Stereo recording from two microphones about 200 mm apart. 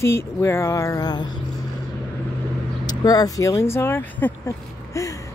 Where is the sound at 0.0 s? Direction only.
15° left (ahead or behind).